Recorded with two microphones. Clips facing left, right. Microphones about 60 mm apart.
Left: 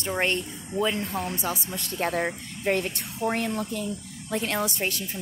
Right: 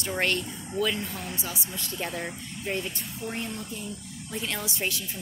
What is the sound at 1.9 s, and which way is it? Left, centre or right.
A woman's voice, left.